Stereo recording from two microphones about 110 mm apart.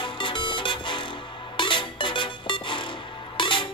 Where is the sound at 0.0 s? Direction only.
45° left (ahead or behind).